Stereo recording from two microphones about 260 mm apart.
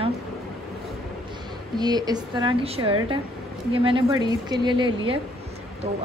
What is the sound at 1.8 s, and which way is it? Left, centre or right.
A woman's voice, centre.